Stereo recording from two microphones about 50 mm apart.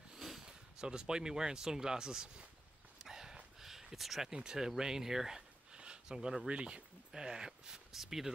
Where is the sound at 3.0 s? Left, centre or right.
Centre.